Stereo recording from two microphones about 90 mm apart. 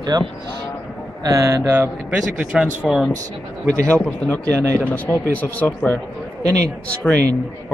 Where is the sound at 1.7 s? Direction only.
20° right (ahead or behind).